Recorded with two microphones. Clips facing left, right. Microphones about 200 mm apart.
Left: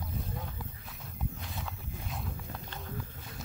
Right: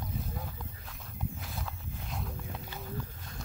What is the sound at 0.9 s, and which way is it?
Wild animals, centre (ahead or behind).